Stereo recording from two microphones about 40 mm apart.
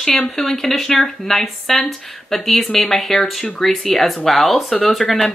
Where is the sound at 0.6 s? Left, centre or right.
Centre.